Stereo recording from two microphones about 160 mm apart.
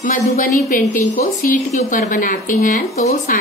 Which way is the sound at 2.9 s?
45° left (ahead or behind).